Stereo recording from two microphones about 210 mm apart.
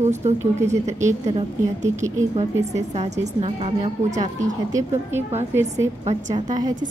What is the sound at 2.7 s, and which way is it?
A woman's voice, 30° right (ahead or behind).